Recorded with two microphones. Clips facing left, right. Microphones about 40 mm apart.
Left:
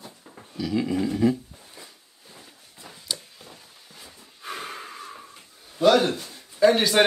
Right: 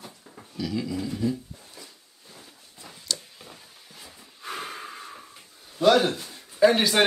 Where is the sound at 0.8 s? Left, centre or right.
Left.